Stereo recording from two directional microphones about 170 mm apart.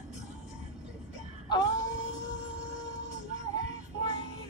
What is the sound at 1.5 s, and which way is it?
Wail, 20° left (ahead or behind).